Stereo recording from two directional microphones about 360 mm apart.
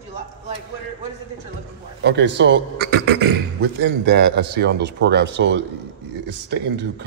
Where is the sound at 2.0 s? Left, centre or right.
Right.